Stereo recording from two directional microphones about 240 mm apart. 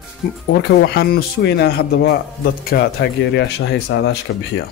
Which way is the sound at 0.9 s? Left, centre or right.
Left.